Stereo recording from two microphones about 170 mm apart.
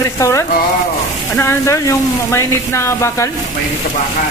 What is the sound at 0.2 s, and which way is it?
Speech, 15° left (ahead or behind).